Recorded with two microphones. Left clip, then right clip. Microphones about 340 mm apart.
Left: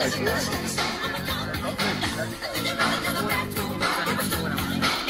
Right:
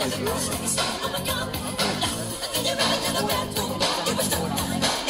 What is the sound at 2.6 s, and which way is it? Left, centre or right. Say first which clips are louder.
Music: right 1 dB; right.